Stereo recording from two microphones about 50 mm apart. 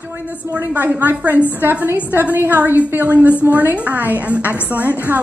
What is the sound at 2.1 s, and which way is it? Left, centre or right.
Speech, right.